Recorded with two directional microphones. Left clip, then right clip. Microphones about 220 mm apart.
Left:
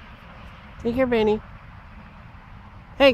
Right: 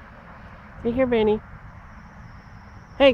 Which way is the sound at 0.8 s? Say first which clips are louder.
Even; 5° left (ahead or behind).